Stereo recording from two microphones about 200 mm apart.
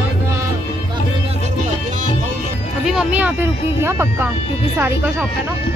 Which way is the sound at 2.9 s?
5° right (ahead or behind).